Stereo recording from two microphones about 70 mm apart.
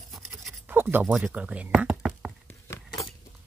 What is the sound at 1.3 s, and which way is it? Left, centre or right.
Speech, centre.